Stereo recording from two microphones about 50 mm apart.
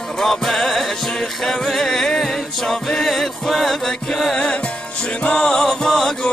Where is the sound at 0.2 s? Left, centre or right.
Centre.